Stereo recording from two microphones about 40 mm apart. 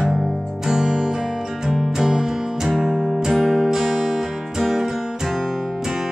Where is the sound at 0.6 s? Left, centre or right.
Centre.